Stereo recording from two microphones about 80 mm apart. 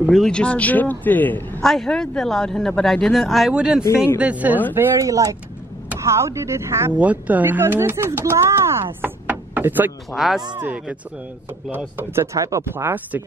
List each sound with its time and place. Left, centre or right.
0.3 s a man's voice: centre
1.6 s speech: centre
4.2 s speech: centre
4.9 s speech: right
7.0 s speech: centre; by 8.8 s right
9.0 s knock: right
10.1 s speech: centre
10.6 s speech: centre
12.2 s speech: right
12.7 s speech: right